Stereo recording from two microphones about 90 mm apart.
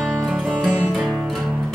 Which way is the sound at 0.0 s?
5° right (ahead or behind).